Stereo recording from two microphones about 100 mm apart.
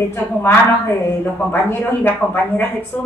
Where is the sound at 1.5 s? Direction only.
20° left (ahead or behind).